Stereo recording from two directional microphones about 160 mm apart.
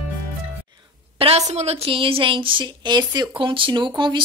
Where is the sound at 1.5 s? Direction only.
45° right (ahead or behind).